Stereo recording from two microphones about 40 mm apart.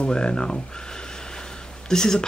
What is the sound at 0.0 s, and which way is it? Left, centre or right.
Speech, left.